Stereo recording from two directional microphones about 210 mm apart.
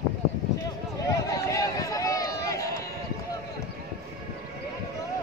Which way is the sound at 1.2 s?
15° left (ahead or behind).